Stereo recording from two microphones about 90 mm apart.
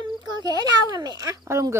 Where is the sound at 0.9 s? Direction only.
45° right (ahead or behind).